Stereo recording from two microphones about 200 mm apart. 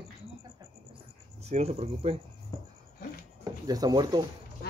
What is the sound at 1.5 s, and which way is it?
Speech, 35° right (ahead or behind).